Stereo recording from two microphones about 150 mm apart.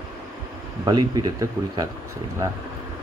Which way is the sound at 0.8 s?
30° right (ahead or behind).